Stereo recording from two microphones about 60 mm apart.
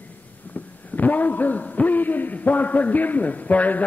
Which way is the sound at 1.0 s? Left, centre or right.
Left.